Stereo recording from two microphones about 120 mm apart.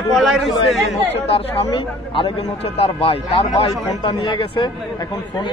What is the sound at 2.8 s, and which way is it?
A man's voice, 50° left (ahead or behind).